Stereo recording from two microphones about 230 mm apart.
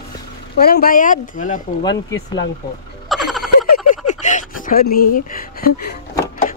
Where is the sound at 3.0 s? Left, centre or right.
Centre.